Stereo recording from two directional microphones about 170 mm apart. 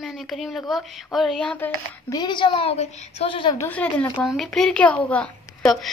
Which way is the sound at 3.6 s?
10° left (ahead or behind).